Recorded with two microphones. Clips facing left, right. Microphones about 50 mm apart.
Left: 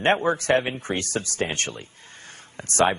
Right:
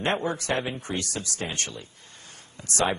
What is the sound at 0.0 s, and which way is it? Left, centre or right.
Speech, left.